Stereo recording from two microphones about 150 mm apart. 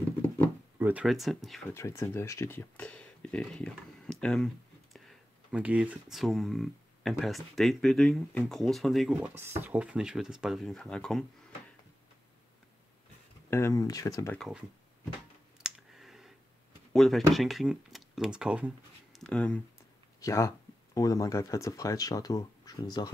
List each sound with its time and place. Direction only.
0.7 s speech: 15° right (ahead or behind)
1.0 s speech: centre (ahead or behind)
1.7 s speech: 20° left (ahead or behind)
13.5 s speech: 20° left (ahead or behind)
15.6 s clicking: centre (ahead or behind)
16.9 s speech: centre (ahead or behind)
19.1 s speech: 5° left (ahead or behind)
20.2 s speech: 20° left (ahead or behind)